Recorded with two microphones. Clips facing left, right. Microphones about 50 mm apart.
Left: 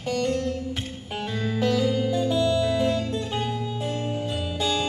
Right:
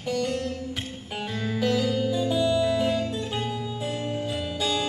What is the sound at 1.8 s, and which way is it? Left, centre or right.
Music, left.